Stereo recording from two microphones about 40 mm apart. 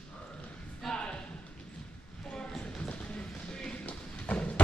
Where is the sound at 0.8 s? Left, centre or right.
Left.